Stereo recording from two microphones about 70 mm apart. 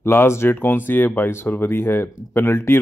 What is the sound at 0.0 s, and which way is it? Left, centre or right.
Speech, left.